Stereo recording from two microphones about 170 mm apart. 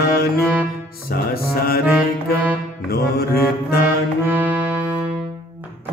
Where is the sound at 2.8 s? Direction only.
65° left (ahead or behind).